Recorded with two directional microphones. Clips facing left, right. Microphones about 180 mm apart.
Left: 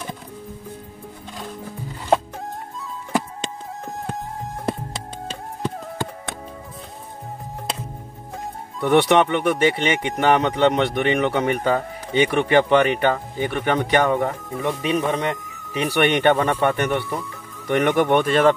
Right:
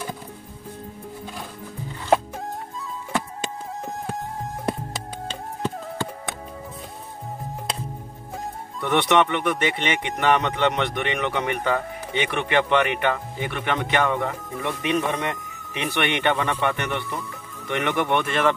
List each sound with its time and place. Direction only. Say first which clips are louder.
4.6 s music: left 2 dB; 5° left (ahead or behind)
8.8 s speech: left 4 dB; 35° left (ahead or behind)
14.6 s speech: left 2 dB; 15° left (ahead or behind)
15.7 s speech: left 6 dB; 35° left (ahead or behind)